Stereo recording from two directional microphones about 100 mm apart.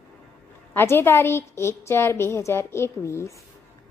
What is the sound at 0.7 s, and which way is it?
A woman's voice, 25° left (ahead or behind).